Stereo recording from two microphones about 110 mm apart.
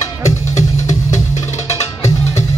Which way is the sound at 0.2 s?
90° left.